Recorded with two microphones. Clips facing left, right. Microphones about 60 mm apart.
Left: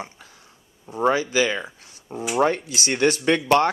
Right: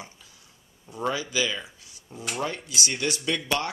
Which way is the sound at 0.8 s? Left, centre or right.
Left.